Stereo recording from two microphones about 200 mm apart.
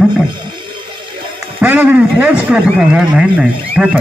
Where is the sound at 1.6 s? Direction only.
10° right (ahead or behind).